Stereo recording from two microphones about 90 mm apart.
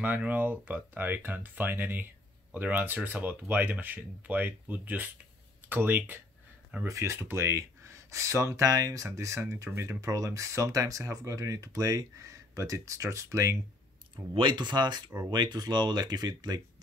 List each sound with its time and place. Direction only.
0.0 s speech: 20° right (ahead or behind)
6.8 s speech: 30° right (ahead or behind)
14.1 s speech: 60° right (ahead or behind)